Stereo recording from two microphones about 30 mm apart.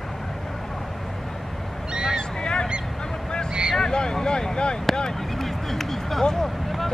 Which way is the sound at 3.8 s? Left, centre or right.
Left.